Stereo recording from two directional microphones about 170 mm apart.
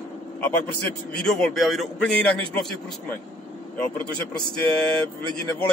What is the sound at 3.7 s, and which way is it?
Speech, 10° left (ahead or behind).